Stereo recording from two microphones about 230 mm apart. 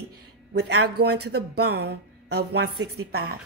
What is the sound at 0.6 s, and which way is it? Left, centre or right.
Speech, right.